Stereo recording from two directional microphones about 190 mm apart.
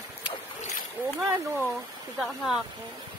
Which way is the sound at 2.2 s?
Centre (ahead or behind).